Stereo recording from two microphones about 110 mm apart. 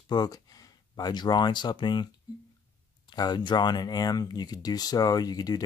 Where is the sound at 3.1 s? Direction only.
40° left (ahead or behind).